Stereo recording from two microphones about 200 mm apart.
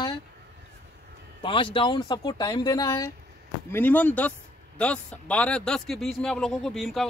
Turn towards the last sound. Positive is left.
turn(degrees=0)  # may be behind; listen again after turning